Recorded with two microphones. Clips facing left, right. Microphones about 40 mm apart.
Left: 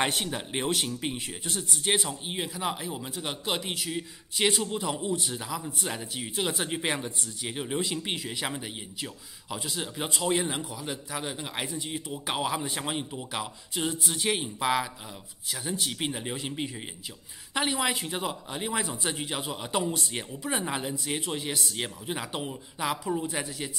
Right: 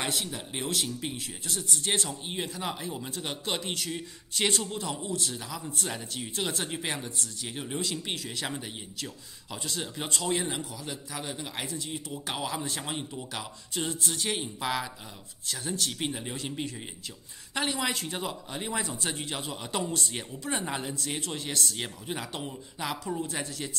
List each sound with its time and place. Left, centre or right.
0.0 s a man's voice: left; by 6.8 s centre
6.8 s a man's voice: left